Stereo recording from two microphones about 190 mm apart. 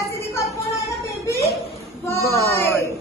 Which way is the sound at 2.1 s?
15° left (ahead or behind).